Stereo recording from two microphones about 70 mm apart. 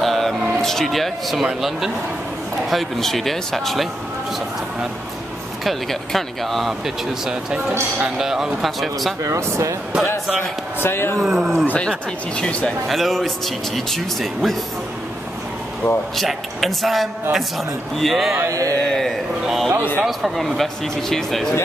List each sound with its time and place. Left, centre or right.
0.0 s vehicle: centre
0.6 s speech: centre
5.6 s speech: centre
8.0 s speech: centre
9.2 s speech: right
10.8 s speech: left
11.1 s speech: centre
11.6 s speech: left
12.8 s speech: centre
16.2 s speech: centre
18.5 s speech: right
18.9 s speech: centre